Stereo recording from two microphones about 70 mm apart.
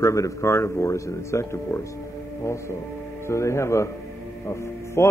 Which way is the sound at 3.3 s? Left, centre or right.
Left.